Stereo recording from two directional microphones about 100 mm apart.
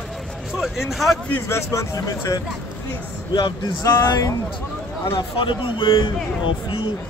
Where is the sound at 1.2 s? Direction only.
20° left (ahead or behind).